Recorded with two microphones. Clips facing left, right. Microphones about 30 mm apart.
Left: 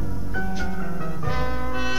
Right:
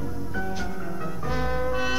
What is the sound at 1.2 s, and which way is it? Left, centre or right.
Music, centre.